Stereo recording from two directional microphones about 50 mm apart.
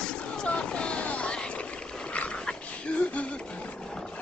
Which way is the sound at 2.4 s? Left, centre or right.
Centre.